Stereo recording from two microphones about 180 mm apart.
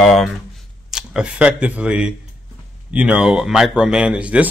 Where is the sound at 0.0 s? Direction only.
Centre (ahead or behind).